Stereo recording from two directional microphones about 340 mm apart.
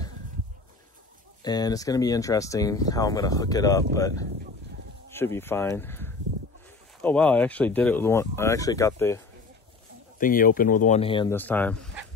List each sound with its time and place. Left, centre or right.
1.4 s speech: centre
5.1 s speech: centre
10.1 s speech: left; by 11.9 s centre